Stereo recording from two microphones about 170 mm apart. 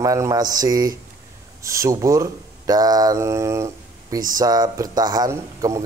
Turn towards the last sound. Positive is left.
turn(degrees=-20)  # may be behind; listen again after turning